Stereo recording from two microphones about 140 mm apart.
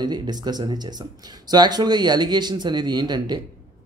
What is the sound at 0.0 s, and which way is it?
Speech, 30° right (ahead or behind).